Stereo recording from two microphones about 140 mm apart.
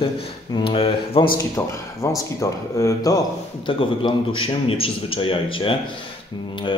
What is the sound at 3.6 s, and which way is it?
Speech, 35° left (ahead or behind).